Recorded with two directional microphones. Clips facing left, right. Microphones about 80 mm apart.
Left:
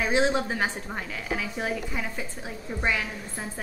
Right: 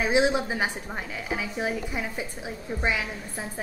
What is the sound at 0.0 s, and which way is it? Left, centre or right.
A woman's voice, centre.